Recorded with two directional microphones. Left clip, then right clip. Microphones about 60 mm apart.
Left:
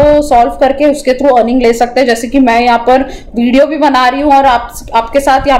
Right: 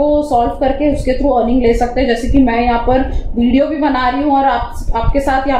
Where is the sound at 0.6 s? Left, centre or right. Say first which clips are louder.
Left 6 dB; left.